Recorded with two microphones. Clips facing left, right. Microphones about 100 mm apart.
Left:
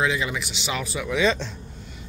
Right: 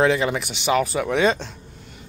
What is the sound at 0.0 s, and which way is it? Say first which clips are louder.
Speech: right 6 dB; 50° right (ahead or behind).